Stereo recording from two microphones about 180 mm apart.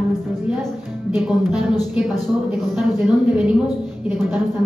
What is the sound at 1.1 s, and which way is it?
Speech, centre (ahead or behind).